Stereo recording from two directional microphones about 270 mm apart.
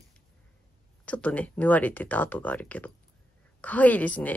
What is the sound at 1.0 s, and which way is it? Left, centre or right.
A woman's voice, centre.